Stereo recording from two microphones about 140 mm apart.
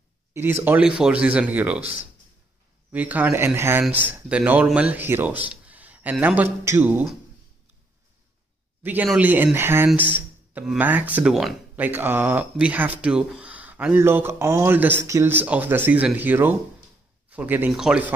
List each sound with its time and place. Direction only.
0.3 s a man's voice: 15° right (ahead or behind)
2.9 s speech: 10° right (ahead or behind)
8.8 s speech: 10° right (ahead or behind)